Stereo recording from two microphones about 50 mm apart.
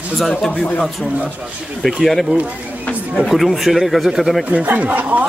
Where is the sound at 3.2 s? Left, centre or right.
Centre.